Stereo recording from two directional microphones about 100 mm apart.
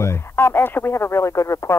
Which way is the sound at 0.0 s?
25° left (ahead or behind).